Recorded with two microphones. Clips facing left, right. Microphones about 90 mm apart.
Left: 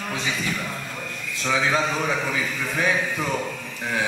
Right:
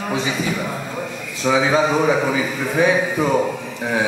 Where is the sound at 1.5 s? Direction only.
10° right (ahead or behind).